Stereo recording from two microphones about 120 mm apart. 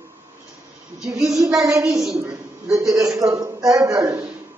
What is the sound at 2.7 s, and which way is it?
A man's voice, 25° right (ahead or behind).